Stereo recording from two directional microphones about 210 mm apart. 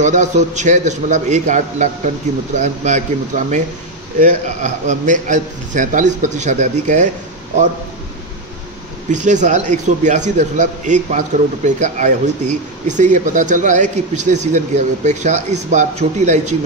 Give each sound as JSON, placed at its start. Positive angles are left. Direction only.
{"t": 0.0, "sound": "a man's voice", "side_deg": -35}
{"t": 9.1, "sound": "a man's voice", "side_deg": -35}